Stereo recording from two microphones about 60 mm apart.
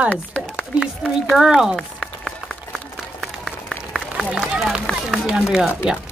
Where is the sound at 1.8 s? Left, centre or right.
Centre.